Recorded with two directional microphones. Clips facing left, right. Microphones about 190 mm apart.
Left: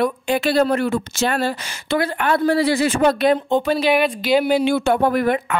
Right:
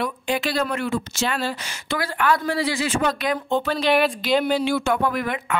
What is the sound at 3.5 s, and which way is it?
Speech, 15° left (ahead or behind).